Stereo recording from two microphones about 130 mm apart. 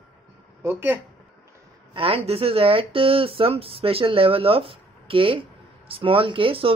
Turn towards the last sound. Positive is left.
turn(degrees=-45)  # may be behind; listen again after turning